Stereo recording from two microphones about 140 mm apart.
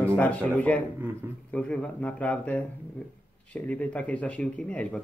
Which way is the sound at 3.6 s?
10° left (ahead or behind).